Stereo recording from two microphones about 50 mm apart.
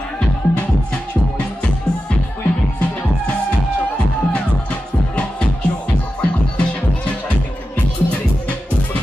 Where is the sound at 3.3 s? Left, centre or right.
Left.